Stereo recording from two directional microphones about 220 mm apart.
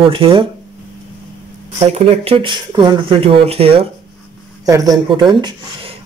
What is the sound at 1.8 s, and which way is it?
Speech, 25° right (ahead or behind).